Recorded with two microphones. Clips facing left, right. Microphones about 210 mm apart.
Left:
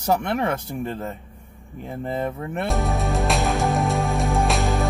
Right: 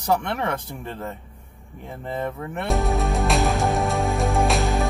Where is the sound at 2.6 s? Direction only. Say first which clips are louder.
Right 1 dB; centre (ahead or behind).